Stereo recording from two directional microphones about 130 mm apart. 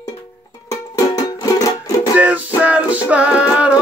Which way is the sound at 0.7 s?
30° left (ahead or behind).